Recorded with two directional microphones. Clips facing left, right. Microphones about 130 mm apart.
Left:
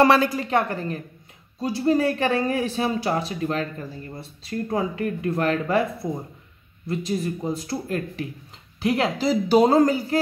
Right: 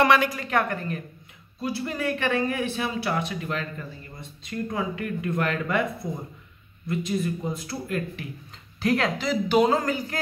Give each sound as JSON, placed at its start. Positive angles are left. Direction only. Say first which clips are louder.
{"t": 0.0, "sound": "speech", "louder": "left 3 dB", "side_deg": 35}
{"t": 6.9, "sound": "speech", "louder": "left 1 dB", "side_deg": 35}
{"t": 8.8, "sound": "speech", "louder": "left 2 dB", "side_deg": 25}